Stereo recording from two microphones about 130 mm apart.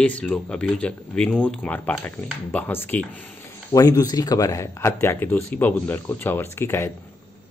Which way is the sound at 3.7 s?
25° left (ahead or behind).